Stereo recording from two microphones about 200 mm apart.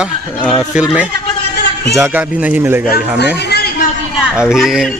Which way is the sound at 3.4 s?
55° left (ahead or behind).